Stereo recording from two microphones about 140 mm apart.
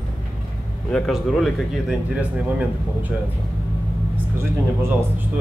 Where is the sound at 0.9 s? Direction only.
Centre (ahead or behind).